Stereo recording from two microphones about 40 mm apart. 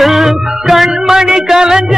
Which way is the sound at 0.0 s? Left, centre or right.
Centre.